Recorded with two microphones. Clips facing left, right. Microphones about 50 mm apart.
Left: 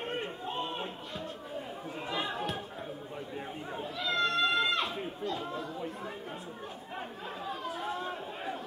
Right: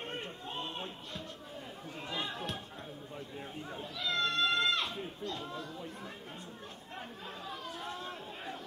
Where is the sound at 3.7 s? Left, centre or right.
Centre.